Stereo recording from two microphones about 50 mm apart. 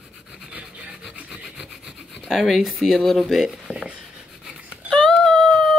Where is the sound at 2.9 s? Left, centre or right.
Centre.